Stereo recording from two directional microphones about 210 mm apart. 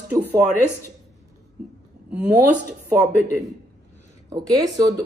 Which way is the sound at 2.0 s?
5° right (ahead or behind).